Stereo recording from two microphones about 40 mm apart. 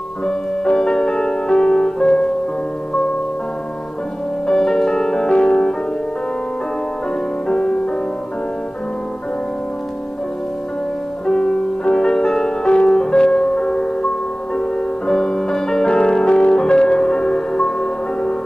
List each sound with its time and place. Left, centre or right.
0.7 s music: centre
4.5 s music: centre
7.4 s music: centre
11.2 s music: centre
12.6 s music: left
12.9 s music: centre